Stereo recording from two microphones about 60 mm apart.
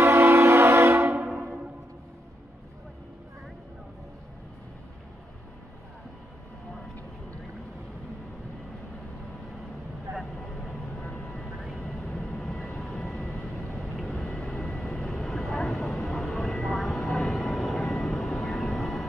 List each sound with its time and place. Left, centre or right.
0.0 s train: right
10.7 s vehicle: left
11.7 s vehicle: centre
14.1 s vehicle: centre